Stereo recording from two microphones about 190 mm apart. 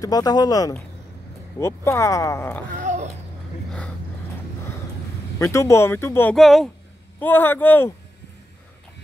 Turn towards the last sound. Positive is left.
turn(degrees=10)  # may be behind; listen again after turning